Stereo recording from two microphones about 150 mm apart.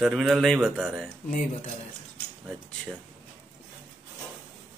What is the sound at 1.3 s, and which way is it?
Speech, 55° left (ahead or behind).